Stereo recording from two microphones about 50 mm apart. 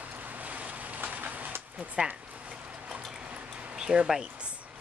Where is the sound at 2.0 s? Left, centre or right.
Right.